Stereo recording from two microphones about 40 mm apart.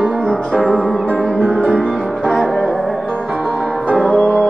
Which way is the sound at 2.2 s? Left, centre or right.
Centre.